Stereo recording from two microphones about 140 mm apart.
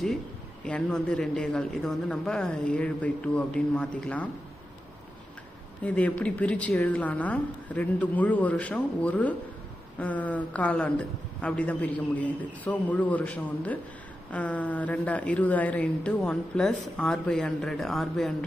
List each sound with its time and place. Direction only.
0.7 s a woman's voice: 5° left (ahead or behind)
5.9 s a woman's voice: 10° left (ahead or behind)